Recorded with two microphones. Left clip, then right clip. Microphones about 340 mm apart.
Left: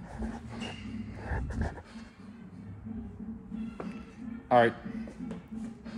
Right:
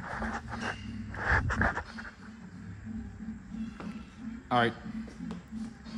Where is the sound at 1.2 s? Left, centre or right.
Left.